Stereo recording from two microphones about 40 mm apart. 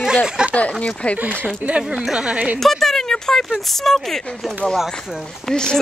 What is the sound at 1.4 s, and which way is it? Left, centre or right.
Speech, right.